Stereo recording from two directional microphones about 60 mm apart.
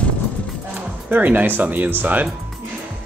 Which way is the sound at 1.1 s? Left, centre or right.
Right.